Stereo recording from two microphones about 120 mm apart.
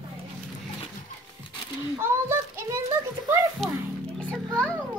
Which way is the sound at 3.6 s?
Centre (ahead or behind).